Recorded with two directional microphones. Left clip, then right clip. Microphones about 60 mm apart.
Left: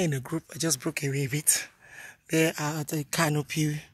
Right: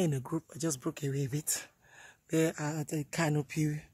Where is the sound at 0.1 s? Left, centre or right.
Centre.